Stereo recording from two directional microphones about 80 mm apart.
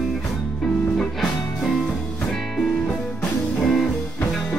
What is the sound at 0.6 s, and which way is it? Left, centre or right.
Music, centre.